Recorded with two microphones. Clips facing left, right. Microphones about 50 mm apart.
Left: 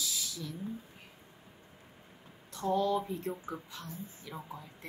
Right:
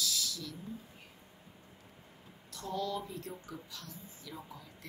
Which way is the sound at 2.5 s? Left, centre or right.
Left.